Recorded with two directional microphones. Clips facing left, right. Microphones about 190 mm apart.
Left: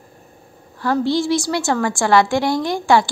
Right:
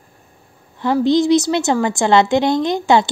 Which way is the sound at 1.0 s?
20° right (ahead or behind).